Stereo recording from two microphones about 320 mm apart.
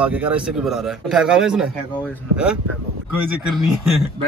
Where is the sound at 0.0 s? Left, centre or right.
Centre.